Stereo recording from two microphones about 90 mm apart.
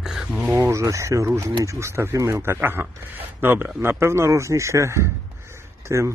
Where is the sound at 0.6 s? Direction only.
35° right (ahead or behind).